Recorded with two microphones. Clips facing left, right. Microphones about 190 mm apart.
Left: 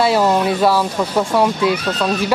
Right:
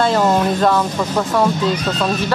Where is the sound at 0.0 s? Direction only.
5° left (ahead or behind).